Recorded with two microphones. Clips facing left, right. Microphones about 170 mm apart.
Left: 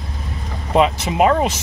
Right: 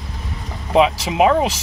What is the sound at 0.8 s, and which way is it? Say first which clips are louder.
Speech: right 1 dB; 5° right (ahead or behind).